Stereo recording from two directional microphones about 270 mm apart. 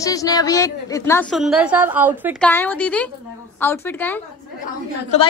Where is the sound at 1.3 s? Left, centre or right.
Centre.